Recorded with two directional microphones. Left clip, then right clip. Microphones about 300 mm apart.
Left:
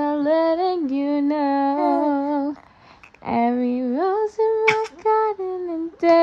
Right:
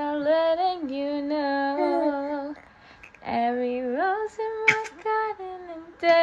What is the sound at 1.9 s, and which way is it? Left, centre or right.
Music, left.